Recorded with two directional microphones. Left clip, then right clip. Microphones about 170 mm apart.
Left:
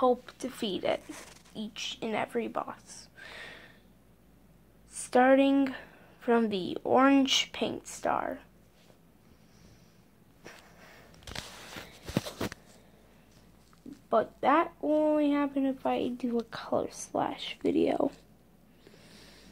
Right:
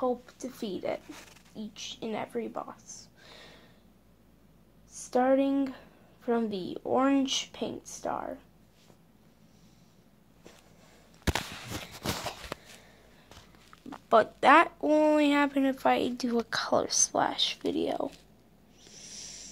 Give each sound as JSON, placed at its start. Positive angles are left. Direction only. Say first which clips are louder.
{"t": 0.0, "sound": "a woman's voice", "louder": "left 4 dB", "side_deg": 5}
{"t": 4.9, "sound": "a woman's voice", "louder": "left 3 dB", "side_deg": 5}
{"t": 14.0, "sound": "speech", "louder": "right 5 dB", "side_deg": -10}
{"t": 18.9, "sound": "a sound", "louder": "right 9 dB", "side_deg": 25}